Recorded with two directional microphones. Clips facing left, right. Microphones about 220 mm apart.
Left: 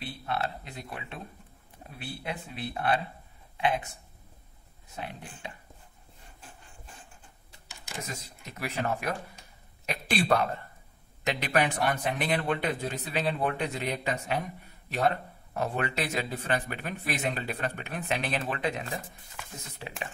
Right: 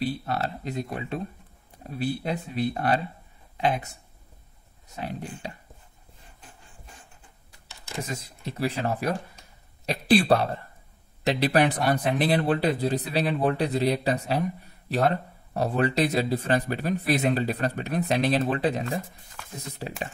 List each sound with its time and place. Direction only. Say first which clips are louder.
0.0 s speech: right 5 dB; 40° right (ahead or behind)
5.0 s speech: right 8 dB; 40° right (ahead or behind)
8.0 s speech: right 7 dB; 30° right (ahead or behind)
15.5 s speech: right 7 dB; 35° right (ahead or behind)